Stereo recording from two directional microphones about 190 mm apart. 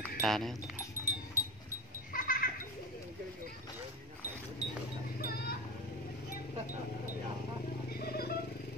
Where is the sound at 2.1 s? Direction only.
45° left (ahead or behind).